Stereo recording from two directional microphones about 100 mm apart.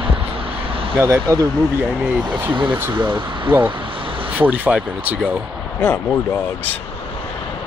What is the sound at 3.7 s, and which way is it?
Vehicle, 60° right (ahead or behind).